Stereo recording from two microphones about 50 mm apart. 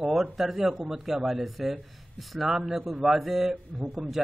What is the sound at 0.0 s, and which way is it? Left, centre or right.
A man's voice, centre.